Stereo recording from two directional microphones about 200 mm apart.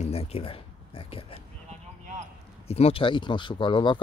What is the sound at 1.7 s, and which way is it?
Basketball bounce, 35° right (ahead or behind).